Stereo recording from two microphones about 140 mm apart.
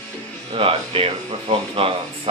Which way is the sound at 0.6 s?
40° right (ahead or behind).